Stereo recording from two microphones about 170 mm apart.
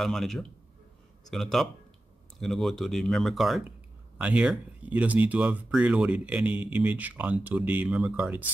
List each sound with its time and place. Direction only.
0.0 s speech: centre (ahead or behind)